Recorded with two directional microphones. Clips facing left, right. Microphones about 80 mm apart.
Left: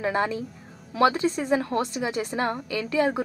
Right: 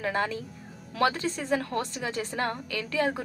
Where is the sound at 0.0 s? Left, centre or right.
Left.